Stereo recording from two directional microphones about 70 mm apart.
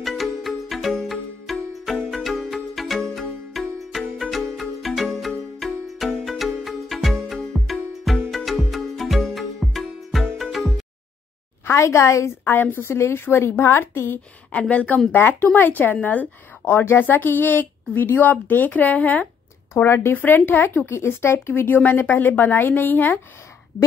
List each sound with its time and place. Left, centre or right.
0.0 s music: centre
11.6 s a woman's voice: left
12.4 s a woman's voice: left
14.5 s speech: centre
19.7 s a woman's voice: left
20.9 s speech: left